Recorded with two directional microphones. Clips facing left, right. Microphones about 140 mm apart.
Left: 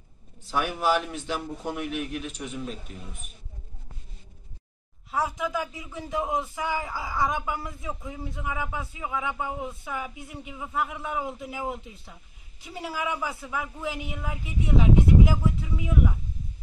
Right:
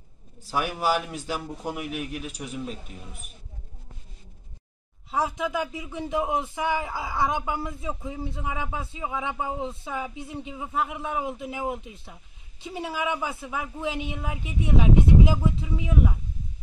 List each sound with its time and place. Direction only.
0.5 s a man's voice: 10° right (ahead or behind)
5.1 s speech: 20° right (ahead or behind)